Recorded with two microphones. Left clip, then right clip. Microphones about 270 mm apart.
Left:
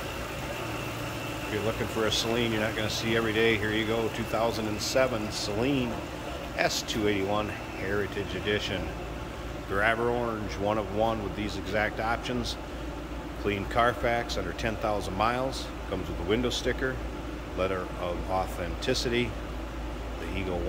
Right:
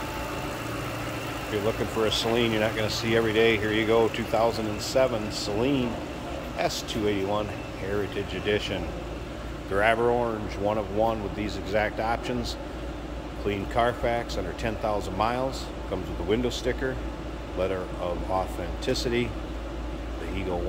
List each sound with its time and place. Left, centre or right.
2.0 s speech: centre
8.5 s speech: centre
13.5 s speech: centre